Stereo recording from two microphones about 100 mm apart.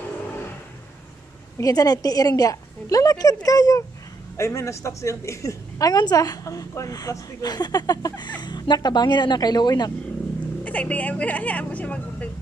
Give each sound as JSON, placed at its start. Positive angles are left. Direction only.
{"t": 1.6, "sound": "a woman's voice", "side_deg": 40}
{"t": 10.6, "sound": "speech", "side_deg": 15}